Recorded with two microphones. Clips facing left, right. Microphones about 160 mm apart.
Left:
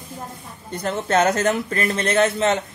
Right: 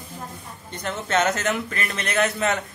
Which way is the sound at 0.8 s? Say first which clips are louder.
Left 4 dB; 35° left (ahead or behind).